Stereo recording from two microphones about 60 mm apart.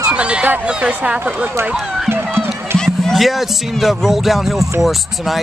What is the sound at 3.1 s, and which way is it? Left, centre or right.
Speech, centre.